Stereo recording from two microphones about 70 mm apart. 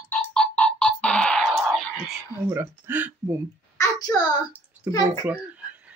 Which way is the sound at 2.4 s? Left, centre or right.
Right.